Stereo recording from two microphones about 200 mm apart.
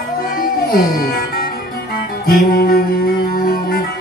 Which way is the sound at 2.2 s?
50° left (ahead or behind).